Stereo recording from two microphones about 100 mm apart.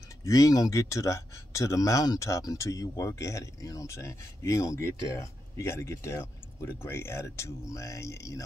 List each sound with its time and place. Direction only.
0.2 s speech: 35° left (ahead or behind)